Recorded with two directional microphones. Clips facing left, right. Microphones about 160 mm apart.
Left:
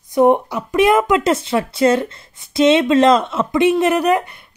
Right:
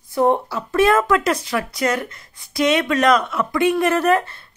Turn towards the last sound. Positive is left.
turn(degrees=15)  # may be behind; listen again after turning